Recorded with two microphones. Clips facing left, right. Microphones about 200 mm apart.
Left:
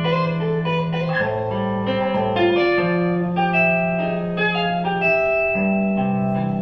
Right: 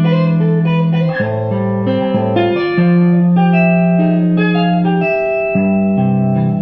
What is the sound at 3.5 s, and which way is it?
Music, 40° right (ahead or behind).